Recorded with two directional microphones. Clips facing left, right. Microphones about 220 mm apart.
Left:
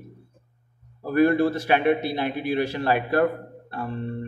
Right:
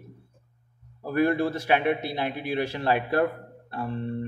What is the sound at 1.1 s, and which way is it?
A man's voice, 20° right (ahead or behind).